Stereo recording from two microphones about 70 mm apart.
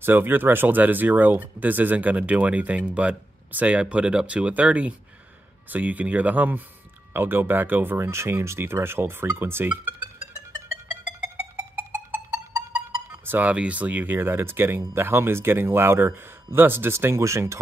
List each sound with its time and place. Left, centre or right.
0.0 s speech: right
10.9 s music: right
13.2 s a sound: right
13.5 s speech: centre; by 17.6 s right